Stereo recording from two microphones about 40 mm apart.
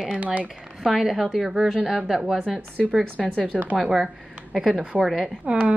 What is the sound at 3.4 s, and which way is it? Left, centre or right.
Speech, right.